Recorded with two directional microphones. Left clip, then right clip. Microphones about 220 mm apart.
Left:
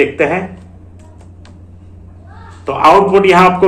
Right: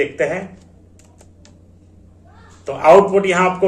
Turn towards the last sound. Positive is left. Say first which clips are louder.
# left 7 dB
turn(degrees=-5)  # may be behind; listen again after turning